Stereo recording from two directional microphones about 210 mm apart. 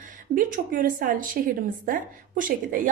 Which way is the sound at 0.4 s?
40° right (ahead or behind).